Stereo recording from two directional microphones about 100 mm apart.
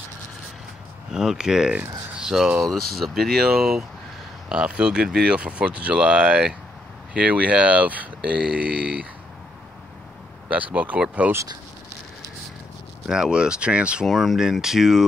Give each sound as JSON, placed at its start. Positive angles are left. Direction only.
{"t": 1.1, "sound": "speech", "side_deg": -5}
{"t": 10.5, "sound": "speech", "side_deg": -15}
{"t": 13.0, "sound": "speech", "side_deg": -5}
{"t": 14.0, "sound": "speech", "side_deg": 0}